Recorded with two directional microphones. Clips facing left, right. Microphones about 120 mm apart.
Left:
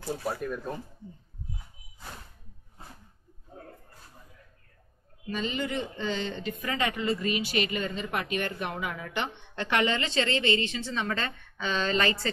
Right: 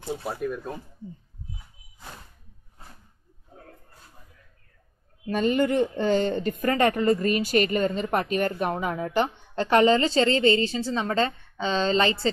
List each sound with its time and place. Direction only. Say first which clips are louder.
0.4 s speech: right 3 dB; 5° right (ahead or behind)
5.2 s speech: right 9 dB; 50° right (ahead or behind); by 12.3 s 30° right (ahead or behind)